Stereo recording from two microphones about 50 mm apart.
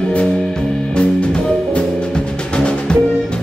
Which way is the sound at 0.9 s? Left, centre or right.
Centre.